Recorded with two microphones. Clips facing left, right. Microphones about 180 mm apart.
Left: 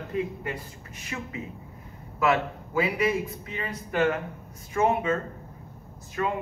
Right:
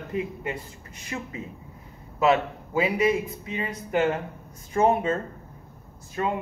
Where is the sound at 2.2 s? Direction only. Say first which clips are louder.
Right 3 dB; 25° right (ahead or behind).